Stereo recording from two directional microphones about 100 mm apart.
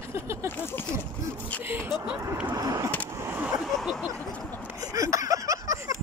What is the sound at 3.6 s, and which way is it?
Speech, centre (ahead or behind).